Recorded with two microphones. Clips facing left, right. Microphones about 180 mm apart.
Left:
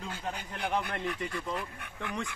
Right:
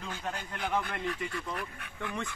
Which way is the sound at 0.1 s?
10° left (ahead or behind).